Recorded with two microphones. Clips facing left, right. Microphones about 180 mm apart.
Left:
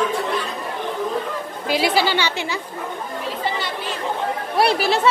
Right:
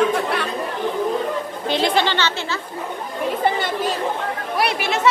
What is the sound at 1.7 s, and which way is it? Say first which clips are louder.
Speech: even; 5° left (ahead or behind).